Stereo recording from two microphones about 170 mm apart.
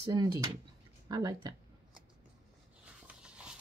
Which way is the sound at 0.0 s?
25° right (ahead or behind).